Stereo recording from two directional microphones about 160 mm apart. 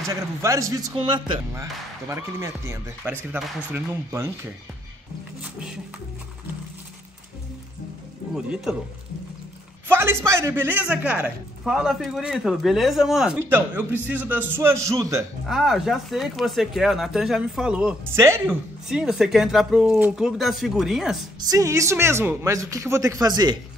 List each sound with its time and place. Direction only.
0.1 s speech: 20° right (ahead or behind)
1.5 s a man's voice: 20° right (ahead or behind)
5.4 s a man's voice: 5° right (ahead or behind)
8.4 s a man's voice: 5° right (ahead or behind)
9.8 s a man's voice: 15° right (ahead or behind)
13.4 s a man's voice: 15° right (ahead or behind)
15.4 s a man's voice: centre (ahead or behind)
18.9 s a man's voice: 5° right (ahead or behind)
21.5 s speech: 20° right (ahead or behind)